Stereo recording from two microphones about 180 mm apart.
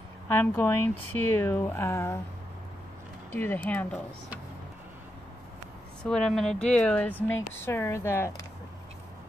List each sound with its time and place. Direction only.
0.3 s speech: 10° left (ahead or behind)
3.3 s speech: 10° left (ahead or behind)
6.0 s speech: 5° left (ahead or behind)